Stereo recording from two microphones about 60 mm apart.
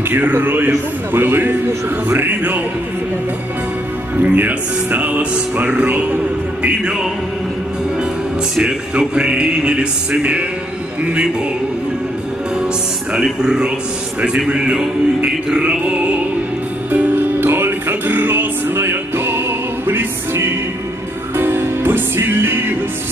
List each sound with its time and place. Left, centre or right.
0.1 s speech: right
4.2 s music: right
6.6 s music: centre
8.5 s music: centre
13.1 s music: centre
16.9 s music: right